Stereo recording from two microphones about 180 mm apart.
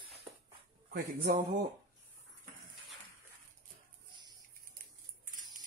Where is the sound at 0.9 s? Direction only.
65° right (ahead or behind).